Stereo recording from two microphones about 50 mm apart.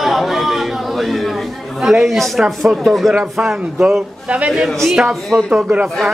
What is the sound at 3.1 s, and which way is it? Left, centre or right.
Speech, right.